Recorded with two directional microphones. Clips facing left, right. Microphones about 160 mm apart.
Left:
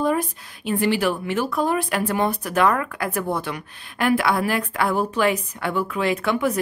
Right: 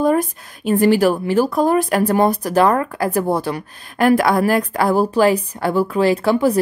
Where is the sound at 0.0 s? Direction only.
45° right (ahead or behind).